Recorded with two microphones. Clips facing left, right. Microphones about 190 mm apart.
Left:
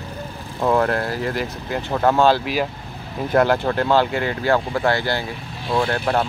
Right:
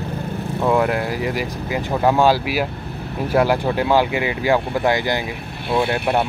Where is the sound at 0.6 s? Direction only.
5° right (ahead or behind).